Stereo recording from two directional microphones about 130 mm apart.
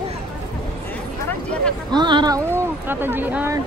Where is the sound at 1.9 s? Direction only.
35° right (ahead or behind).